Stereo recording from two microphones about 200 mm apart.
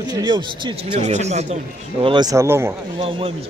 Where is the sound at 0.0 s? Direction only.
20° right (ahead or behind).